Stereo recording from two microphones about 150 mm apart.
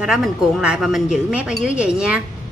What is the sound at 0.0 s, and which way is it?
A woman's voice, 5° right (ahead or behind).